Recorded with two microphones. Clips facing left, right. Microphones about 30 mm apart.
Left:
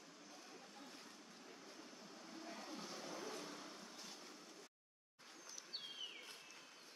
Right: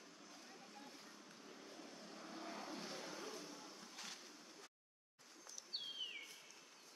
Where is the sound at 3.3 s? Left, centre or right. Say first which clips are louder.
Left 2 dB; left.